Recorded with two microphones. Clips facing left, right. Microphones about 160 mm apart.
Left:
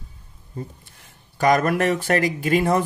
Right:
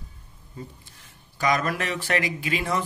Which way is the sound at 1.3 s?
50° left (ahead or behind).